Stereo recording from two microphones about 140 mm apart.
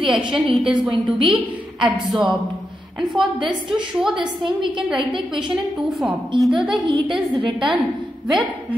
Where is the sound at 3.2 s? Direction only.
35° right (ahead or behind).